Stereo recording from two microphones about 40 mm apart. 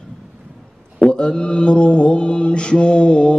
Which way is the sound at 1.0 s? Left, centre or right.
Left.